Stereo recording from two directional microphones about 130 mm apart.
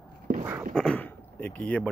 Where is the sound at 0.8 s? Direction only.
10° left (ahead or behind).